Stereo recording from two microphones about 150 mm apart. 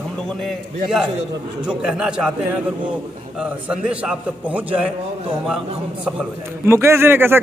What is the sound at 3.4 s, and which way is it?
A man's voice, 5° right (ahead or behind).